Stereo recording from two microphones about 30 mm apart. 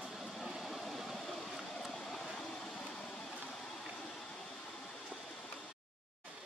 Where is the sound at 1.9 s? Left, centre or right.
Centre.